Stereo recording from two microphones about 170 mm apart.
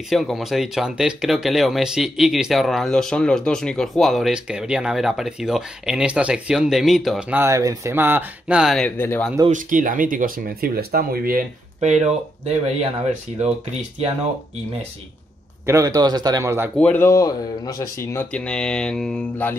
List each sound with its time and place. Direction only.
0.1 s speech: centre (ahead or behind)
9.5 s speech: 50° right (ahead or behind)
15.6 s a man's voice: 20° right (ahead or behind)
16.7 s speech: 10° left (ahead or behind)
18.1 s speech: 5° left (ahead or behind)